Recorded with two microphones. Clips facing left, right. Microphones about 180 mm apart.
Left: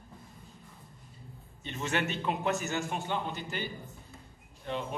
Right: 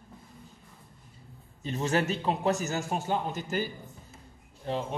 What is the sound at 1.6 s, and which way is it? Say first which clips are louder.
A man's voice: right 5 dB; 35° right (ahead or behind).